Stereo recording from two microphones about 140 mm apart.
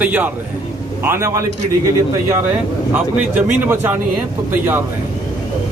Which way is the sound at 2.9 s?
15° right (ahead or behind).